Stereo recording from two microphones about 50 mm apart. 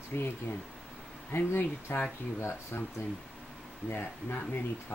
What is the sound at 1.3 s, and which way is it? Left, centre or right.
Speech, left.